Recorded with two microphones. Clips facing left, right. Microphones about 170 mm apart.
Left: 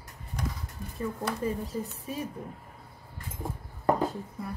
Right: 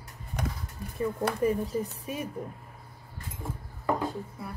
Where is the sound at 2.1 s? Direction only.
15° right (ahead or behind).